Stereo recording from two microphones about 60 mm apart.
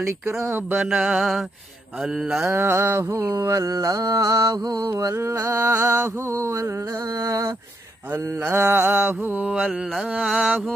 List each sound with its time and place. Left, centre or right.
0.7 s music: centre
2.4 s mantra: right
3.5 s mantra: right
5.5 s a sound: right
8.6 s a sound: right
10.3 s mantra: centre